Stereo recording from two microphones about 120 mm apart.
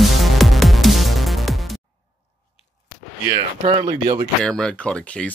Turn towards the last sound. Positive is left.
turn(degrees=10)  # may be behind; listen again after turning